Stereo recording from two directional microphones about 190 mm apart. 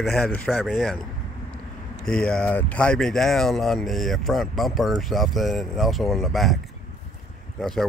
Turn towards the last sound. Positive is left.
turn(degrees=0)  # may be behind; listen again after turning